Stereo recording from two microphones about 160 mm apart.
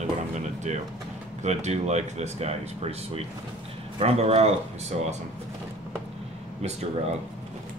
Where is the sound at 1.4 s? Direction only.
45° right (ahead or behind).